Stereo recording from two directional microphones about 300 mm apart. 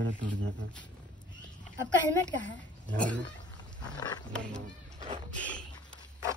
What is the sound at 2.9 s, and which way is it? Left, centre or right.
Speech, centre.